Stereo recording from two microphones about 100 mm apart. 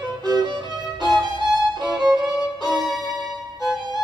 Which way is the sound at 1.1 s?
45° right (ahead or behind).